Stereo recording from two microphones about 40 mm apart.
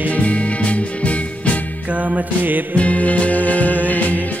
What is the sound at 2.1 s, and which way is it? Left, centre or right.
Music, right.